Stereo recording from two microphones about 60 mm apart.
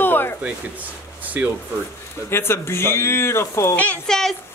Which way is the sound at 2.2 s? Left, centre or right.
Left.